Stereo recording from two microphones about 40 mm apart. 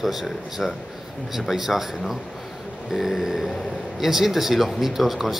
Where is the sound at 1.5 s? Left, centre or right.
Centre.